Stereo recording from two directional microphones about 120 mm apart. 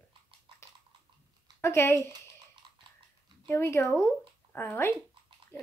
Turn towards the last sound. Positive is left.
turn(degrees=15)  # may be behind; listen again after turning